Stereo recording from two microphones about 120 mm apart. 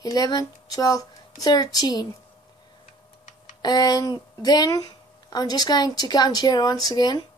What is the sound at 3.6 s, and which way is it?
A woman's voice, 35° left (ahead or behind).